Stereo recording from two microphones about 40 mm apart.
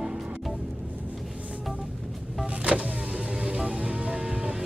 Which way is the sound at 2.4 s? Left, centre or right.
Right.